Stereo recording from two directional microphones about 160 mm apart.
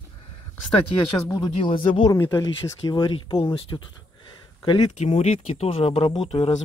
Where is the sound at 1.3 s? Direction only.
30° left (ahead or behind).